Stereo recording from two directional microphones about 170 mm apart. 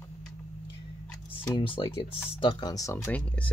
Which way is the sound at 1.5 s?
30° left (ahead or behind).